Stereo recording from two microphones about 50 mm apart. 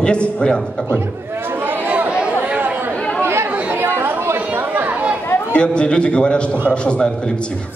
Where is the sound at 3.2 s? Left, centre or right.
Right.